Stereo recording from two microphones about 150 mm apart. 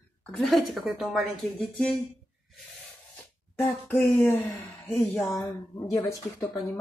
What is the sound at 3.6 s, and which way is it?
Speech, 15° left (ahead or behind).